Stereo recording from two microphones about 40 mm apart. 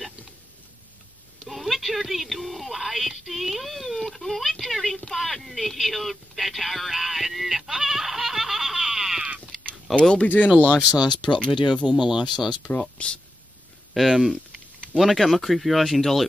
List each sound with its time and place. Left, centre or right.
1.4 s a sound: centre
5.1 s radio: centre
9.9 s speech: centre
10.2 s speech: left
11.2 s speech: left
12.0 s speech: centre
13.0 s speech: left
13.9 s speech: centre